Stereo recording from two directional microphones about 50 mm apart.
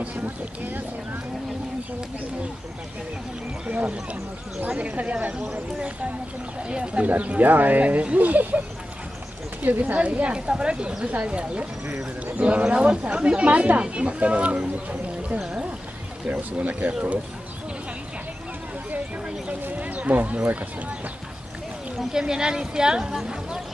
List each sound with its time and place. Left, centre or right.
0.0 s a sound: right
3.7 s speech: right
6.7 s speech: right
9.9 s speech: right
16.3 s speech: right
19.7 s a sound: right
22.1 s speech: centre